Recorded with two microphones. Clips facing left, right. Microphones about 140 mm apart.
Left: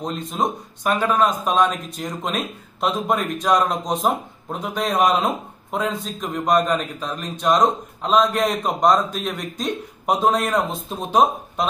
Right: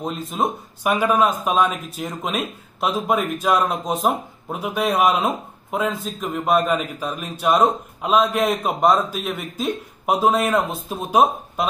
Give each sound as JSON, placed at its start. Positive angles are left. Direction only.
{"t": 0.0, "sound": "a man's voice", "side_deg": -5}